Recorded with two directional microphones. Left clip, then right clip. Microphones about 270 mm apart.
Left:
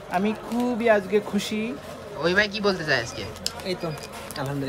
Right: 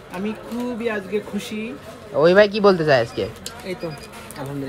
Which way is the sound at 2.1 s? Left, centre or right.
Centre.